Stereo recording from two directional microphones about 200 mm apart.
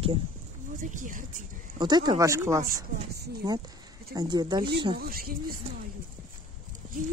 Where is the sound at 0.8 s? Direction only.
40° right (ahead or behind).